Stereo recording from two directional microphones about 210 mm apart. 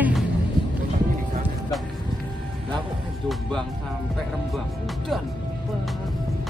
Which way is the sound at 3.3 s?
Centre (ahead or behind).